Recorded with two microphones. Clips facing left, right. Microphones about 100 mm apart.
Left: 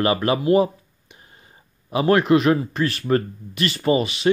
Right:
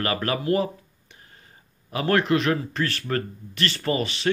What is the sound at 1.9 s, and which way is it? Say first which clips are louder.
Speech: left 5 dB; 20° left (ahead or behind).